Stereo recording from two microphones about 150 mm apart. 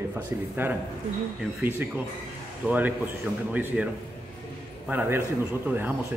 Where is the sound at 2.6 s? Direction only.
10° right (ahead or behind).